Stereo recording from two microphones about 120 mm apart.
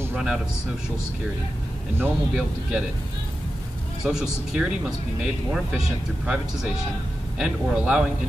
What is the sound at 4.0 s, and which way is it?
Speech, 5° right (ahead or behind).